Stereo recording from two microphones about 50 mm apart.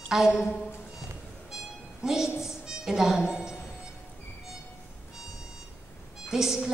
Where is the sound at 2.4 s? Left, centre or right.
Centre.